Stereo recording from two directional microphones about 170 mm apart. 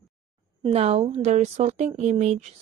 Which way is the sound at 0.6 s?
35° right (ahead or behind).